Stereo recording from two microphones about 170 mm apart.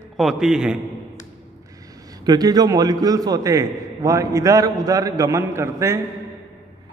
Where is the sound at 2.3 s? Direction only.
20° right (ahead or behind).